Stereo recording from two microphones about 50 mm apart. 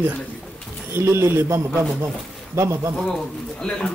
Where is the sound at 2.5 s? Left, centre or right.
Right.